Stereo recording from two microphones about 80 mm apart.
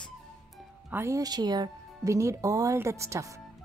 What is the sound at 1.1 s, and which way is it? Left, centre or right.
Speech, right.